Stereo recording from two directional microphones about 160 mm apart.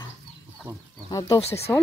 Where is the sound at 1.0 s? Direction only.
20° left (ahead or behind).